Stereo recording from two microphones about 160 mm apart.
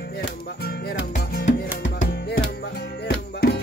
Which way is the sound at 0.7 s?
75° left (ahead or behind).